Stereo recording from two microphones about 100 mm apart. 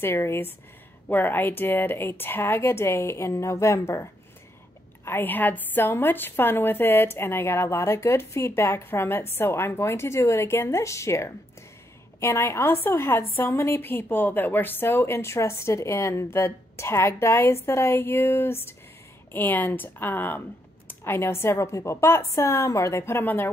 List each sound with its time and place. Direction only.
0.0 s a woman's voice: 25° left (ahead or behind)